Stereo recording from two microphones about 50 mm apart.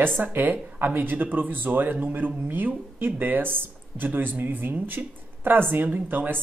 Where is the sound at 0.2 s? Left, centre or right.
Right.